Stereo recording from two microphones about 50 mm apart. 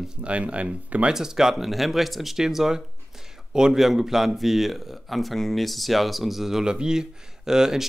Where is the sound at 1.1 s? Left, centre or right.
Centre.